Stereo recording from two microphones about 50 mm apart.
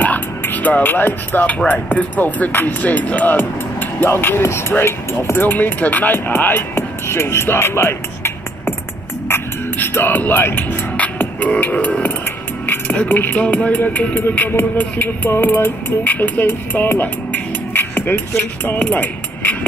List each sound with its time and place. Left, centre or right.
0.0 s music: left
1.7 s speech: left
4.0 s music: left
4.5 s speech: left
5.5 s speech: left
6.7 s music: left
9.8 s music: left
11.0 s beatboxing: left
12.6 s music: left
13.1 s speech: left
13.4 s speech: left
14.1 s music: left
18.8 s speech: left